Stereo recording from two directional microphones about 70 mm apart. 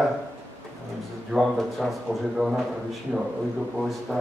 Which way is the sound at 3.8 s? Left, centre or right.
Centre.